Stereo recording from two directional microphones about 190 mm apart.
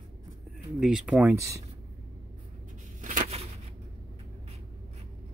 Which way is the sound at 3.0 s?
40° right (ahead or behind).